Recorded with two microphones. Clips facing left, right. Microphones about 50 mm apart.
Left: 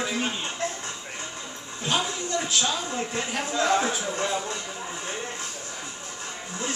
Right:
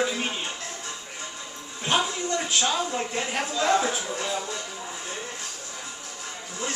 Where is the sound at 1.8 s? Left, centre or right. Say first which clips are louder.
Right 2 dB; centre.